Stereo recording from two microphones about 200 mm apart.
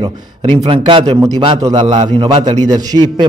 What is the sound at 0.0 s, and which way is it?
A man's voice, 25° right (ahead or behind).